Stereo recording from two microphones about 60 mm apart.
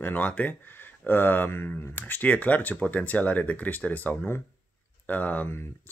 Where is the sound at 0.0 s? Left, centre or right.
Left.